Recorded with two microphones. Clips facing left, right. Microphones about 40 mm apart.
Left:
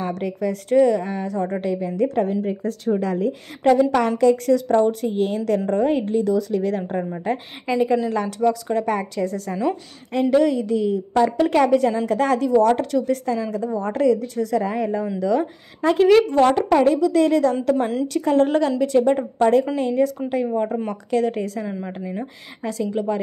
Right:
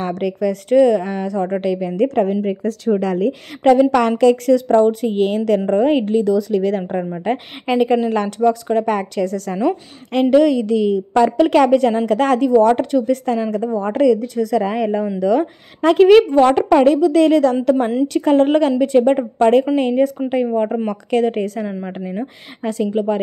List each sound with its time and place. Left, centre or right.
0.0 s a woman's voice: right
2.0 s a woman's voice: right
4.6 s a woman's voice: right
6.8 s speech: right
7.2 s a woman's voice: right
12.5 s a woman's voice: right
15.1 s a woman's voice: right
16.1 s a woman's voice: right
21.6 s speech: right
22.6 s speech: right